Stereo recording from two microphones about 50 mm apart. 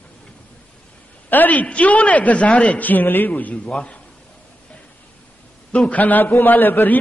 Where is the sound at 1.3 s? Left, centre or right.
Left.